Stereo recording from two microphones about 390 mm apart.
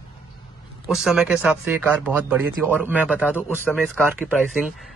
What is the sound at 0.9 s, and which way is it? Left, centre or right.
Speech, centre.